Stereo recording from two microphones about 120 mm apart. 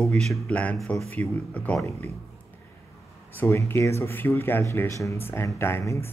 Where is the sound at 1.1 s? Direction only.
10° left (ahead or behind).